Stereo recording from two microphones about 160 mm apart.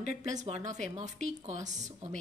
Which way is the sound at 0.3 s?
45° right (ahead or behind).